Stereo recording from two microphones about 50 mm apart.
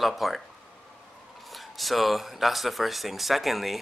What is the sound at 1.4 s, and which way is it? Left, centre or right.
Speech, centre.